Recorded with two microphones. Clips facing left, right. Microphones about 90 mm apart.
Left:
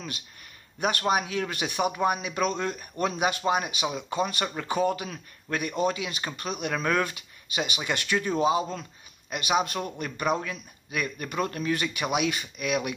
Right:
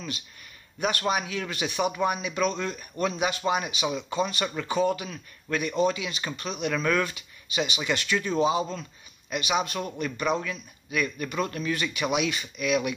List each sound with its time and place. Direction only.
0.7 s speech: 40° left (ahead or behind)
9.3 s speech: 50° left (ahead or behind)